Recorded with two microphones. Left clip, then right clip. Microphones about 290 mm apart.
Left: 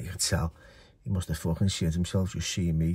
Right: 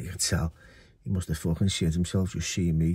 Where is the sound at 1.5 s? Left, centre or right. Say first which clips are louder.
Right 3 dB; left.